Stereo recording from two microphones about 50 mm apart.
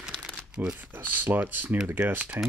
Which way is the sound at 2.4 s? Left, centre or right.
Right.